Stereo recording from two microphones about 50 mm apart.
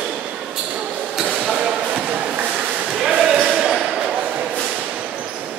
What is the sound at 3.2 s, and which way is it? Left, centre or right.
Basketball bounce, centre.